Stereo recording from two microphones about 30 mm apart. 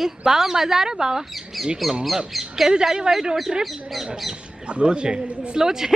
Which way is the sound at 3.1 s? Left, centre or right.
Right.